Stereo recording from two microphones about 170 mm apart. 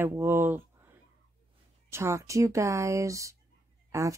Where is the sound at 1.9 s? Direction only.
15° right (ahead or behind).